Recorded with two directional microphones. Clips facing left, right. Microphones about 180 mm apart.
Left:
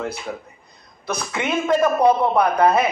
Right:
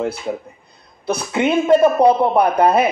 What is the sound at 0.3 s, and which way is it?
A man's voice, 20° right (ahead or behind).